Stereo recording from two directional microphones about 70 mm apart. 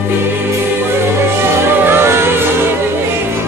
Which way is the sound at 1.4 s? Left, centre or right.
Right.